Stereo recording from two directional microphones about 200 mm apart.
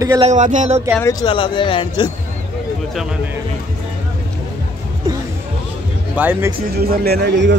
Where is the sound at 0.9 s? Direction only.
15° left (ahead or behind).